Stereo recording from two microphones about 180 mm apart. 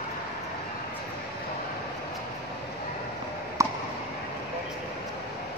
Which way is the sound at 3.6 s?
20° right (ahead or behind).